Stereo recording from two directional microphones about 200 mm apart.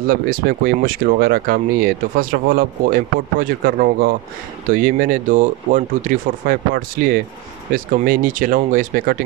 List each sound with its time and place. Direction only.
0.1 s speech: 50° right (ahead or behind)